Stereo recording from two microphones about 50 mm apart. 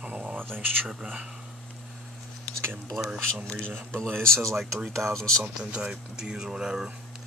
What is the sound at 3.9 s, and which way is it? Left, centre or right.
Speech, centre.